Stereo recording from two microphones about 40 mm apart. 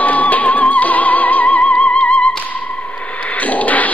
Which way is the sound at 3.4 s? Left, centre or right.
Left.